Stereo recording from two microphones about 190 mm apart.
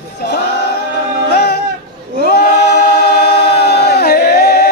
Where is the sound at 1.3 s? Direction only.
60° left (ahead or behind).